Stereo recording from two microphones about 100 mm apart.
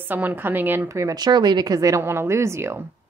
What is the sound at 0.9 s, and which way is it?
A woman's voice, 30° right (ahead or behind).